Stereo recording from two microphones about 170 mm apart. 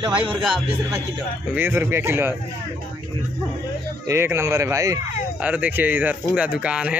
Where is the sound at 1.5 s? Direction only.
10° right (ahead or behind).